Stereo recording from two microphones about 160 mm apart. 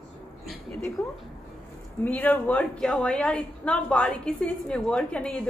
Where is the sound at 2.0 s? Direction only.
10° left (ahead or behind).